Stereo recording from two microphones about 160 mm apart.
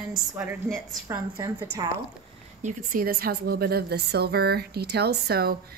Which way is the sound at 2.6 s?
60° right (ahead or behind).